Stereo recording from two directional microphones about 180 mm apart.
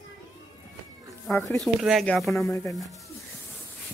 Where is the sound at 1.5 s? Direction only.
Centre (ahead or behind).